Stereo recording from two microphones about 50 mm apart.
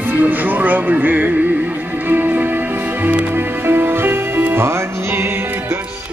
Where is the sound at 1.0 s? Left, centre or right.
Right.